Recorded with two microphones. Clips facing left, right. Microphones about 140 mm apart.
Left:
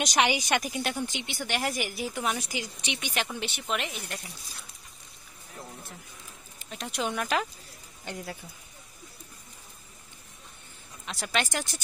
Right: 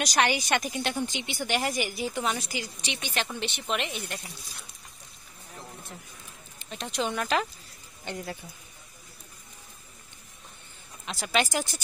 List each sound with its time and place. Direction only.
0.2 s a woman's voice: 15° left (ahead or behind)
6.6 s a woman's voice: 5° left (ahead or behind)
11.1 s a woman's voice: centre (ahead or behind)